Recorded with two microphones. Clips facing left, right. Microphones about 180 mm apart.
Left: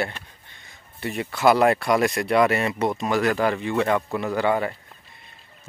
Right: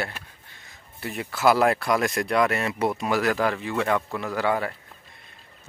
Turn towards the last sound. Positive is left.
turn(degrees=0)  # may be behind; listen again after turning